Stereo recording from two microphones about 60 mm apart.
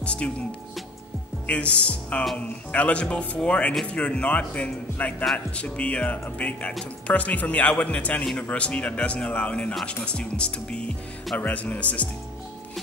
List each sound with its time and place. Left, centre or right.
0.0 s speech: centre